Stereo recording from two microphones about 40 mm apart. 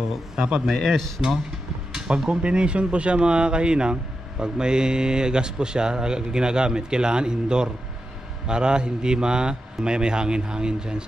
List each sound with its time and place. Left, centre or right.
0.4 s speech: right